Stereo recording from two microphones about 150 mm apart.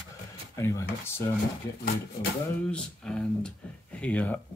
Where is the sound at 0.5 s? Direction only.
20° left (ahead or behind).